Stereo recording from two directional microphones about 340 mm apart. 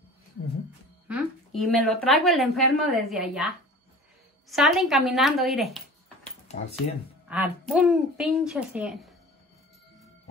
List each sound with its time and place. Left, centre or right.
1.0 s a woman's voice: centre
7.2 s a woman's voice: centre